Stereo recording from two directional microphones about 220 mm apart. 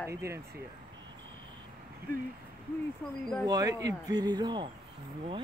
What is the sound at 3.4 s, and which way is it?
Speech, 15° right (ahead or behind).